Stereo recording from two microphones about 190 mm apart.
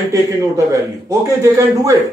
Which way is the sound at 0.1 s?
15° right (ahead or behind).